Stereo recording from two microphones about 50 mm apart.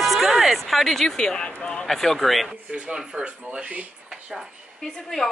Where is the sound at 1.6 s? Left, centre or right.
Centre.